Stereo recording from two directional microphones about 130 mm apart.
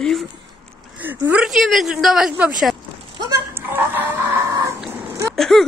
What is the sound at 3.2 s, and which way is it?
Goat, 20° right (ahead or behind).